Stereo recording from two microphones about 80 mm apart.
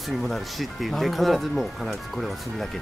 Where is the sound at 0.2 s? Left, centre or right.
Centre.